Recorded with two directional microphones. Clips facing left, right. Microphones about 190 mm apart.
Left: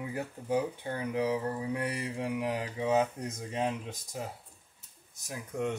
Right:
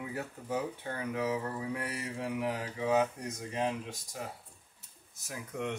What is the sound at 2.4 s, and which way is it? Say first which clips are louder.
Speech: left 2 dB; 20° left (ahead or behind).